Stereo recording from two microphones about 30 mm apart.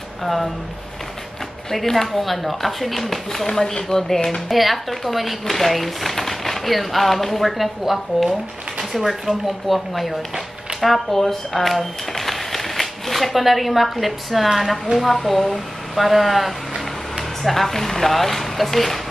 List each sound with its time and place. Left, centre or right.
0.2 s speech: centre
1.7 s speech: centre
3.3 s speech: centre
4.5 s speech: centre